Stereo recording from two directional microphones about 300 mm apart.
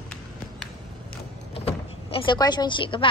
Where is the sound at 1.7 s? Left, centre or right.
Centre.